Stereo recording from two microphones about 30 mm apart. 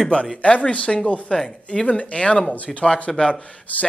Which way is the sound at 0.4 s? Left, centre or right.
Left.